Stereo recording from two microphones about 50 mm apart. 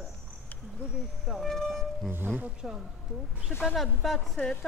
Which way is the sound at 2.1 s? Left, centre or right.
Right.